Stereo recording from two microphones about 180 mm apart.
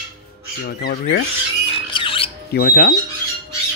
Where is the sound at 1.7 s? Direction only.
30° left (ahead or behind).